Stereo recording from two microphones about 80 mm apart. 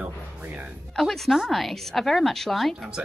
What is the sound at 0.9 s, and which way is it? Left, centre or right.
A woman's voice, centre.